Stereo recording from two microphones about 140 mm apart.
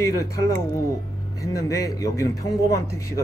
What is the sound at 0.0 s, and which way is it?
A man's voice, 20° left (ahead or behind).